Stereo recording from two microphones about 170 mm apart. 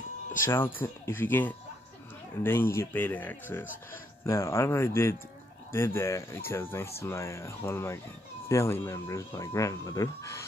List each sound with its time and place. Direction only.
0.5 s speech: 10° left (ahead or behind)